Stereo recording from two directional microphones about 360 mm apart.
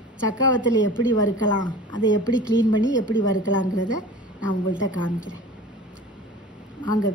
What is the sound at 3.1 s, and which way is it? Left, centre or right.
Speech, left.